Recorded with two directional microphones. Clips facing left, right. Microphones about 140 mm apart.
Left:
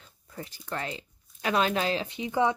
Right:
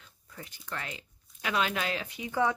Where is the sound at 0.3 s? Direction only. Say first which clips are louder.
Left 5 dB; 35° left (ahead or behind).